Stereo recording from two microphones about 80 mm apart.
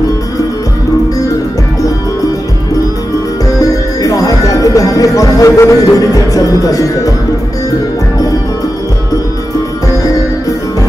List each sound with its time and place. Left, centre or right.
3.4 s music: left